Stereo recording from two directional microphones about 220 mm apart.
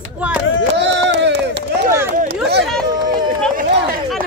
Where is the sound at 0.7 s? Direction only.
55° right (ahead or behind).